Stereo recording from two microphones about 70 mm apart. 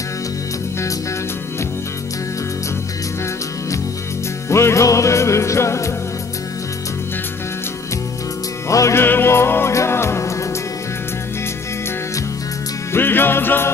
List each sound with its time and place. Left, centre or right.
4.5 s music: left
8.6 s music: left
9.0 s music: left
12.9 s music: left